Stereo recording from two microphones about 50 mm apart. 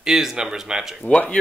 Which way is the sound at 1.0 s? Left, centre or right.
Left.